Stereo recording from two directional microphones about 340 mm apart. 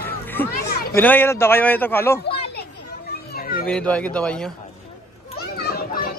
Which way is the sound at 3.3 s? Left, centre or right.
Left.